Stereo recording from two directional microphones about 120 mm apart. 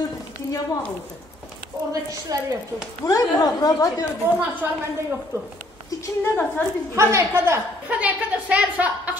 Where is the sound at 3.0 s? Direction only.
30° left (ahead or behind).